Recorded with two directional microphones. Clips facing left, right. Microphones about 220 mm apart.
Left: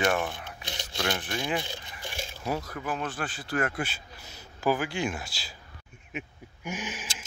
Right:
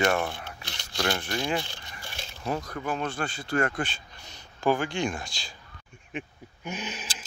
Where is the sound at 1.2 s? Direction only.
5° left (ahead or behind).